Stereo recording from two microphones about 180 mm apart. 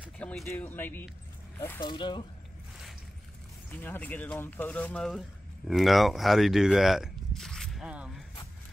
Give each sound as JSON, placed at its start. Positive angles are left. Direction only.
{"t": 0.2, "sound": "speech", "side_deg": 5}
{"t": 1.8, "sound": "speech", "side_deg": 25}
{"t": 3.7, "sound": "speech", "side_deg": 10}